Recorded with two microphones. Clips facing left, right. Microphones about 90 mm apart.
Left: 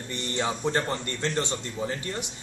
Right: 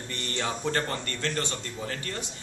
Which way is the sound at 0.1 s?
20° left (ahead or behind).